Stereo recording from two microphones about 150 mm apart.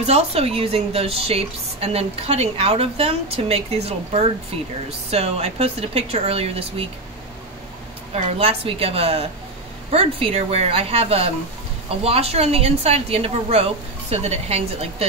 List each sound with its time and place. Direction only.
0.0 s a woman's voice: 40° right (ahead or behind)
8.1 s a woman's voice: 40° right (ahead or behind)